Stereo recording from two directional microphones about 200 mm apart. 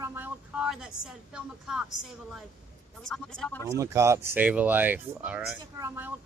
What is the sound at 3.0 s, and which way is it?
Speech, 5° left (ahead or behind).